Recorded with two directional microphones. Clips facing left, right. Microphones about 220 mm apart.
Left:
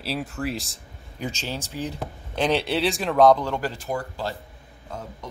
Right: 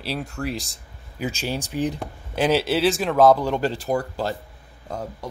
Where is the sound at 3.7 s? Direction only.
35° right (ahead or behind).